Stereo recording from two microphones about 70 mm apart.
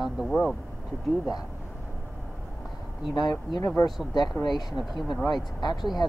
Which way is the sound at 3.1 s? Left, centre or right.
Left.